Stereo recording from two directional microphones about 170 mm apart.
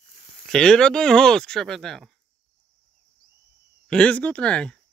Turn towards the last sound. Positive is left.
turn(degrees=5)  # may be behind; listen again after turning